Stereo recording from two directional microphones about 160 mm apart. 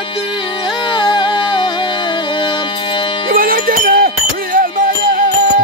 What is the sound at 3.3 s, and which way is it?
Music, 65° right (ahead or behind).